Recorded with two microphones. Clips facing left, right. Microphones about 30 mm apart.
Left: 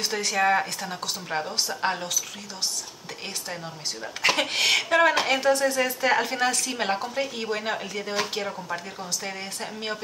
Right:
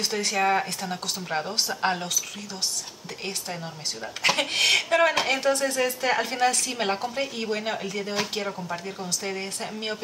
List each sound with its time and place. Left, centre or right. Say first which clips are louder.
0.0 s a woman's voice: left 1 dB; centre
4.2 s a woman's voice: even; centre